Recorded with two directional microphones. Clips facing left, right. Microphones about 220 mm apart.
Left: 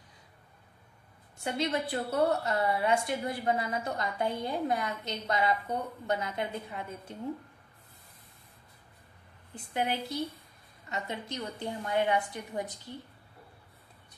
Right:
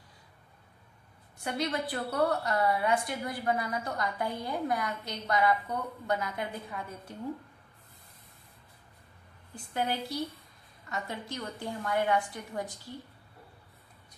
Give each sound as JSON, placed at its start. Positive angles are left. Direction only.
{"t": 1.4, "sound": "a woman's voice", "side_deg": 25}
{"t": 9.8, "sound": "a woman's voice", "side_deg": 20}